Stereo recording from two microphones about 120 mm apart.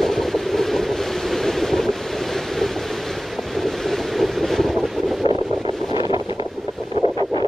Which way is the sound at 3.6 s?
Centre (ahead or behind).